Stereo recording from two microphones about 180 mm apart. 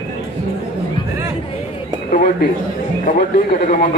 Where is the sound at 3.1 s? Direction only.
50° left (ahead or behind).